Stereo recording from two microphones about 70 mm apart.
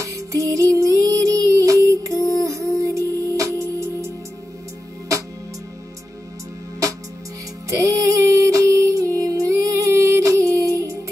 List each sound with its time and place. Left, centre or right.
0.0 s music: right
7.7 s music: right